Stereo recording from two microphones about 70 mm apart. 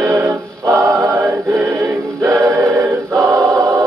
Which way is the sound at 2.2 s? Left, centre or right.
Right.